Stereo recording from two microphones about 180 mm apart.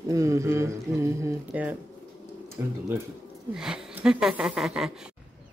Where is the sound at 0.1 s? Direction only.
15° right (ahead or behind).